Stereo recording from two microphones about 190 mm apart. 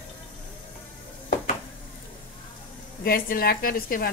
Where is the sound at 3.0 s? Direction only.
50° left (ahead or behind).